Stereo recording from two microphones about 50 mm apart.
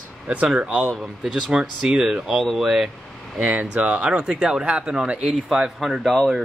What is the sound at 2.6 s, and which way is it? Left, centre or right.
Speech, centre.